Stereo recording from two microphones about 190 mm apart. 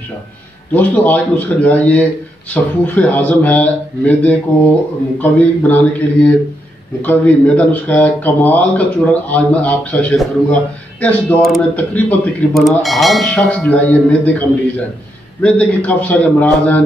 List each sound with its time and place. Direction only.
0.7 s speech: 10° left (ahead or behind)
15.4 s speech: 5° left (ahead or behind)